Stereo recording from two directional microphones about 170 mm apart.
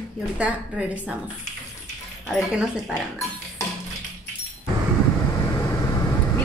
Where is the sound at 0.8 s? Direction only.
5° right (ahead or behind).